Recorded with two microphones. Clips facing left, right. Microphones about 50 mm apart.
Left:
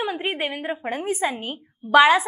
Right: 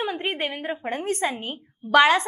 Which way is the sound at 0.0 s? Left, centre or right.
Centre.